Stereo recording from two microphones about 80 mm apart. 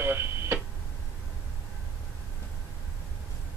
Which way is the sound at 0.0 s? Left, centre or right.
Right.